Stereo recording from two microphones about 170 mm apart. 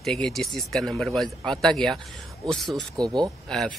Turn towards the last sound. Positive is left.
turn(degrees=5)  # may be behind; listen again after turning